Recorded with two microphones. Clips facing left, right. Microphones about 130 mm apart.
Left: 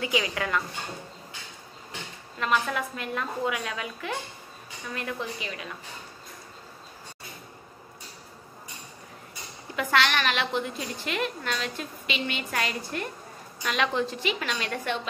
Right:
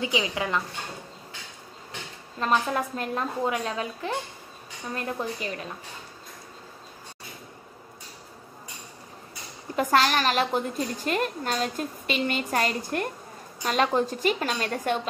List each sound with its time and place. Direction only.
0.0 s speech: 20° right (ahead or behind)
2.3 s a woman's voice: 35° right (ahead or behind)
9.8 s a woman's voice: 40° right (ahead or behind)